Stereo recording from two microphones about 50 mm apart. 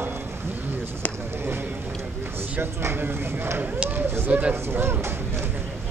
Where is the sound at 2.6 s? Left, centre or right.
Right.